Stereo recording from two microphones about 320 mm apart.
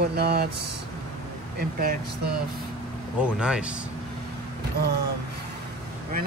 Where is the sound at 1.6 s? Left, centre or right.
Right.